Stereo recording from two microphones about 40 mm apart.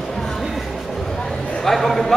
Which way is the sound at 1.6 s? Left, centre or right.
Centre.